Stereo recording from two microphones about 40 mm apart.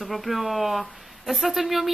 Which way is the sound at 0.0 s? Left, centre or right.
Centre.